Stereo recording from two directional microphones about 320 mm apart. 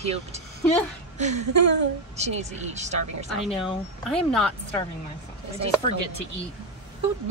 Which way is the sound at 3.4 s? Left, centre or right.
Centre.